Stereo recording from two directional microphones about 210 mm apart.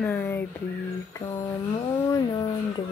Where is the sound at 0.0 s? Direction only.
10° left (ahead or behind).